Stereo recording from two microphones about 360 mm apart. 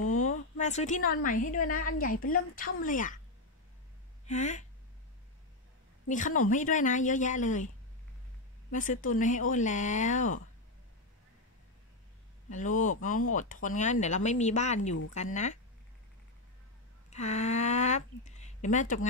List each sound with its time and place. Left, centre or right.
0.2 s a woman's voice: centre
4.3 s a woman's voice: centre
6.0 s a woman's voice: left
8.7 s a woman's voice: left
12.4 s a woman's voice: left
17.1 s speech: centre